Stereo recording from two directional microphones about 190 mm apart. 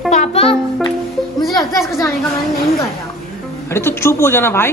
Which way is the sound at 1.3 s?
Centre (ahead or behind).